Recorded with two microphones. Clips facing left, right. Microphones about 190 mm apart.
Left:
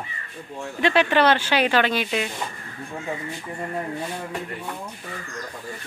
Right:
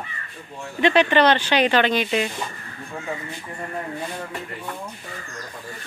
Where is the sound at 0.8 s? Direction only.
5° left (ahead or behind).